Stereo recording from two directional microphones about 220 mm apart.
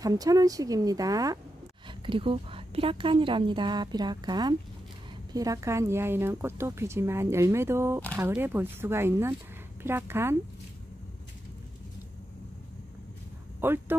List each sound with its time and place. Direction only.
0.0 s a woman's voice: 15° right (ahead or behind)
13.6 s speech: 10° right (ahead or behind)